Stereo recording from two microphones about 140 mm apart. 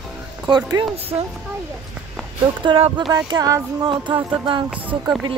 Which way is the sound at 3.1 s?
30° right (ahead or behind).